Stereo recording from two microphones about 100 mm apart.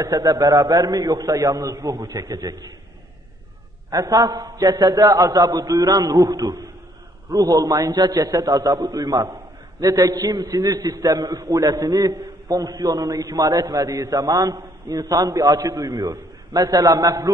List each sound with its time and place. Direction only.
0.0 s a man's voice: 40° right (ahead or behind)
1.9 s a man's voice: 45° right (ahead or behind)
3.9 s a man's voice: 40° right (ahead or behind)
9.3 s a sound: 30° right (ahead or behind)
10.1 s a man's voice: 35° right (ahead or behind)